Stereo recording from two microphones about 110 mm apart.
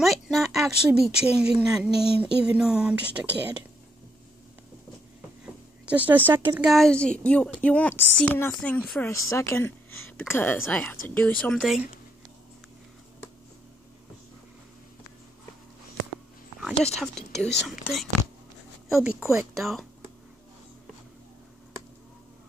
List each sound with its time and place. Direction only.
0.0 s speech: centre (ahead or behind)
5.4 s a sound: 10° right (ahead or behind)
6.6 s speech: centre (ahead or behind)
6.9 s speech: 10° left (ahead or behind)
9.0 s a woman's voice: 25° left (ahead or behind)
16.8 s speech: 5° left (ahead or behind)